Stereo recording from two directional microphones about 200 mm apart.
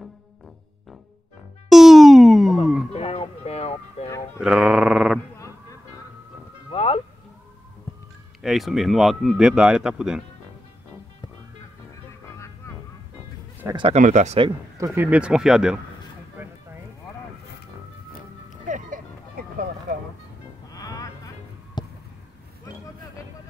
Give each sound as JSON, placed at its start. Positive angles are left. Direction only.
{"t": 1.7, "sound": "music", "side_deg": 0}
{"t": 2.9, "sound": "music", "side_deg": 30}
{"t": 4.4, "sound": "a sound", "side_deg": -5}
{"t": 6.7, "sound": "music", "side_deg": 30}
{"t": 8.4, "sound": "speech", "side_deg": 0}
{"t": 13.7, "sound": "speech", "side_deg": -30}
{"t": 14.8, "sound": "speech", "side_deg": -10}
{"t": 18.7, "sound": "music", "side_deg": -45}
{"t": 20.7, "sound": "a sound", "side_deg": 15}